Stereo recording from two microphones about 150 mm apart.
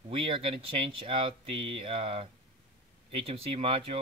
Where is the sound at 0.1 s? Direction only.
40° right (ahead or behind).